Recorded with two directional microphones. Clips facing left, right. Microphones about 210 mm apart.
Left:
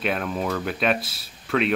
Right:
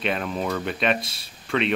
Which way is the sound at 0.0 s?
5° left (ahead or behind).